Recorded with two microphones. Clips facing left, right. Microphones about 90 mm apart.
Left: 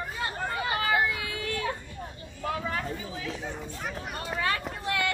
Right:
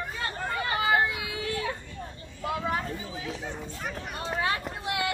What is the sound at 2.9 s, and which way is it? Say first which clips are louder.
Chatter: even; 25° right (ahead or behind).